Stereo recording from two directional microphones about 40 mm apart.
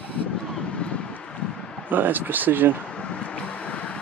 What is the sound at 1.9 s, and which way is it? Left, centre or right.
Speech, right.